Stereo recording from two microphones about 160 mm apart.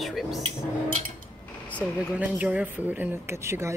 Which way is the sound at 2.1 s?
10° right (ahead or behind).